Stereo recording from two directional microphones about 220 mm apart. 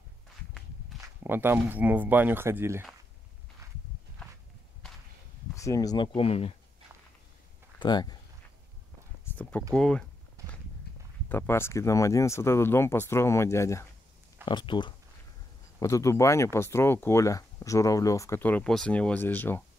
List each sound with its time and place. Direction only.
1.0 s speech: 10° right (ahead or behind)
5.6 s speech: 15° left (ahead or behind)
7.8 s speech: 20° left (ahead or behind)
9.2 s a sound: 10° left (ahead or behind)
9.8 s speech: 5° left (ahead or behind)
11.2 s speech: 10° left (ahead or behind)